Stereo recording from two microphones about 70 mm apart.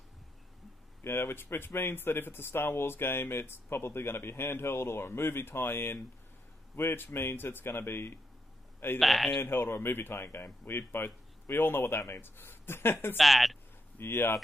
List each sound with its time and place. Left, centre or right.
1.0 s speech: left
9.0 s speech: centre
9.4 s speech: left
13.2 s speech: centre
13.9 s speech: left